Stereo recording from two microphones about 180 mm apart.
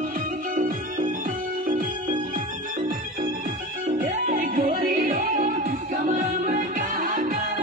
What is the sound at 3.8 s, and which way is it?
Music, 50° right (ahead or behind).